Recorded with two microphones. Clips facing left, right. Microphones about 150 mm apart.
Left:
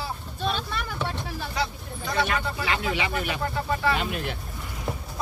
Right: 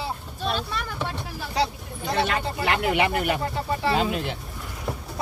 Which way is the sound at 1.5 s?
30° right (ahead or behind).